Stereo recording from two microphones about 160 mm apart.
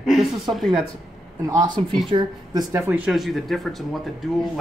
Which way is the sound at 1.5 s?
25° right (ahead or behind).